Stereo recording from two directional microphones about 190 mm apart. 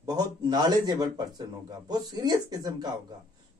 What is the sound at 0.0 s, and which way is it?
Speech, 20° right (ahead or behind).